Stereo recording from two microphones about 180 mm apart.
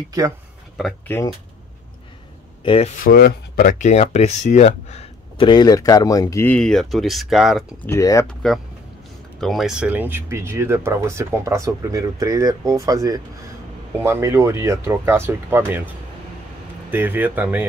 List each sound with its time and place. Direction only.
1.0 s speech: 15° left (ahead or behind)
2.6 s speech: 30° left (ahead or behind)
2.9 s speech: 50° left (ahead or behind)
3.7 s speech: 40° left (ahead or behind)
5.5 s speech: 20° left (ahead or behind); by 7.6 s centre (ahead or behind)
7.8 s speech: 15° left (ahead or behind)
8.3 s speech: 5° left (ahead or behind); by 15.9 s 10° right (ahead or behind)
16.9 s speech: 10° right (ahead or behind)